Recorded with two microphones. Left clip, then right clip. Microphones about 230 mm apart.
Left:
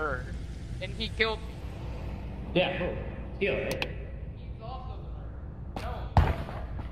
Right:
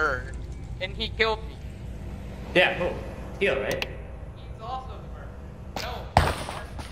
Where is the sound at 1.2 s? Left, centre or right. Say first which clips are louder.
Right 4 dB; right.